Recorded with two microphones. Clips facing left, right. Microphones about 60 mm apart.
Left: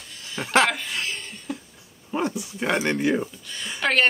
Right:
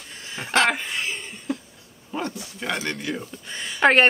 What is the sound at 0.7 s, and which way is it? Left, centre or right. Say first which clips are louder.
Laughter: right 3 dB; right.